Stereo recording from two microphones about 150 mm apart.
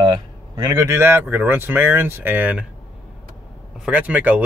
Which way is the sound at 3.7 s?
5° right (ahead or behind).